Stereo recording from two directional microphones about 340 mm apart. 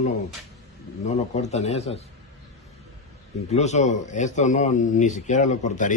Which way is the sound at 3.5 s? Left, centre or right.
Centre.